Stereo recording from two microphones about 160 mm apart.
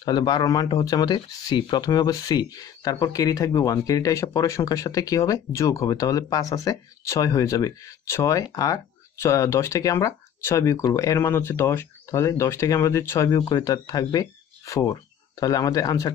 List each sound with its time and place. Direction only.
0.0 s speech: 25° left (ahead or behind)